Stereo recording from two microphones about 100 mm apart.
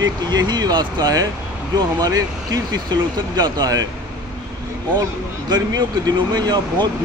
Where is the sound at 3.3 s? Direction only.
40° right (ahead or behind).